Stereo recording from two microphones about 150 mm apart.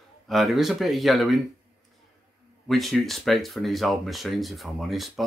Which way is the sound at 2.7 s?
Centre (ahead or behind).